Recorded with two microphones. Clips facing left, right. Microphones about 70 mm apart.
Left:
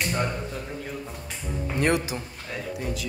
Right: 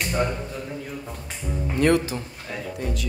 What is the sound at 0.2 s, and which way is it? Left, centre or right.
Speech, centre.